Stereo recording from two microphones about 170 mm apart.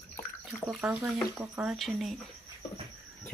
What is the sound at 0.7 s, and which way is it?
Cricket, 5° right (ahead or behind).